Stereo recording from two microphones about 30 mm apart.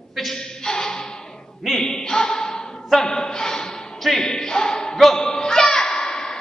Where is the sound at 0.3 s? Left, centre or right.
Left.